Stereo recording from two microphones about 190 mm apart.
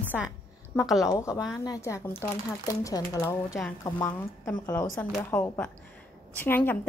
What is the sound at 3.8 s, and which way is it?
A woman's voice, 15° left (ahead or behind).